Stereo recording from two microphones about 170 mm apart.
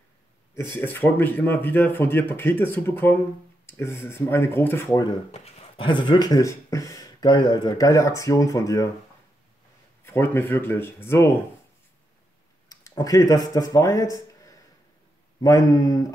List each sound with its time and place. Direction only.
0.7 s speech: 10° left (ahead or behind)
5.3 s speech: 40° left (ahead or behind); by 8.9 s 20° left (ahead or behind)
10.0 s speech: 15° left (ahead or behind)
12.6 s speech: 20° left (ahead or behind)
14.1 s a sound: 20° left (ahead or behind)
15.4 s speech: 20° left (ahead or behind)